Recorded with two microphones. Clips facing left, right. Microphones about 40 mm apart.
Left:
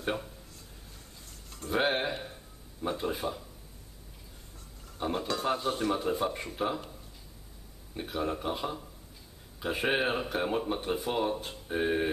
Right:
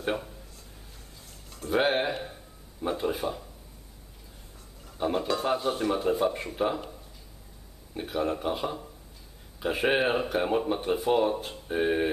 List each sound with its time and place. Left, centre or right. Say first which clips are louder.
0.0 s speech: right 3 dB; centre
1.5 s speech: right 3 dB; centre
4.9 s speech: right 4 dB; centre
7.9 s speech: right 4 dB; centre